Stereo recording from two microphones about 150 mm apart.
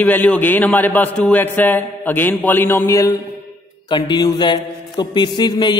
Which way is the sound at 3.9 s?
30° left (ahead or behind).